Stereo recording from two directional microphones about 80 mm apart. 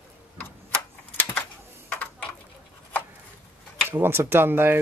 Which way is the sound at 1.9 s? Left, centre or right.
Centre.